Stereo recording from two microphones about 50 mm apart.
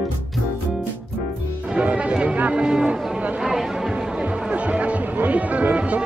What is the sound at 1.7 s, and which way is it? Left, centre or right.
Music, right.